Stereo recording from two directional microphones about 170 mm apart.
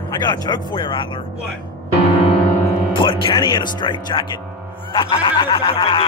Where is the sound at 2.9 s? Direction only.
30° left (ahead or behind).